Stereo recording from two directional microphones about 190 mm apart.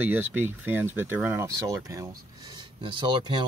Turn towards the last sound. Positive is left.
turn(degrees=-25)  # may be behind; listen again after turning